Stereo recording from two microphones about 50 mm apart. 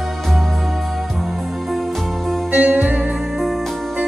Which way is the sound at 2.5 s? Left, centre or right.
Right.